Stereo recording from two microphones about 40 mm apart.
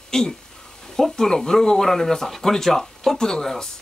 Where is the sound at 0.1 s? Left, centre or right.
Centre.